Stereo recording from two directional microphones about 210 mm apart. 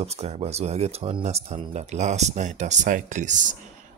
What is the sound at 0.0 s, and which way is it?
Speech, 30° right (ahead or behind).